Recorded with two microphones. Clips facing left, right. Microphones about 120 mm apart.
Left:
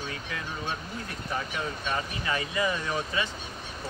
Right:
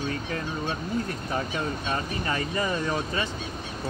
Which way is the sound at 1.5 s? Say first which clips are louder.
Right 2 dB; 35° right (ahead or behind).